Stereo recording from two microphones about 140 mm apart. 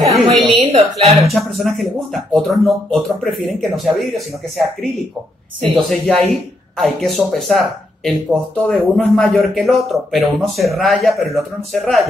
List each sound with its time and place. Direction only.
0.1 s a woman's voice: centre (ahead or behind)
0.6 s a woman's voice: 45° right (ahead or behind)
1.2 s speech: centre (ahead or behind)
5.8 s speech: centre (ahead or behind)